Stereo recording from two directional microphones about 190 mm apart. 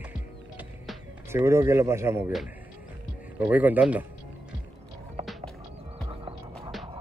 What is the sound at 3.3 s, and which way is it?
Speech, 10° right (ahead or behind).